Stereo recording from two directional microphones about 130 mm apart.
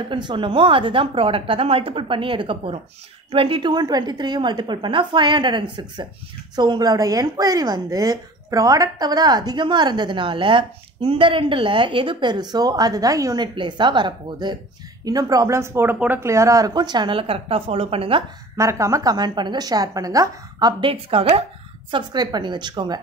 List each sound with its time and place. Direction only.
0.1 s a woman's voice: 40° right (ahead or behind)
18.6 s speech: 25° right (ahead or behind)
20.9 s speech: 45° right (ahead or behind)
21.9 s a woman's voice: 35° right (ahead or behind)